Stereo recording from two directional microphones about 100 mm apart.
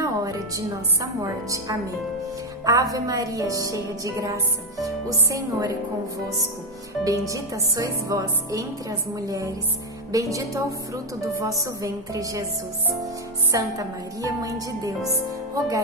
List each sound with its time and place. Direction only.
0.0 s music: 35° right (ahead or behind)
1.2 s a woman's voice: 35° right (ahead or behind)
7.1 s a woman's voice: 35° right (ahead or behind)
11.6 s a woman's voice: 35° right (ahead or behind)
13.5 s a woman's voice: 35° right (ahead or behind)
15.0 s music: 35° right (ahead or behind)